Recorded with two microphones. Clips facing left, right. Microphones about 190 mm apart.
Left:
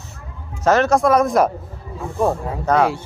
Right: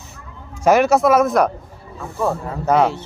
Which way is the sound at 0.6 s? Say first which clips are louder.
Right 1 dB; 10° right (ahead or behind).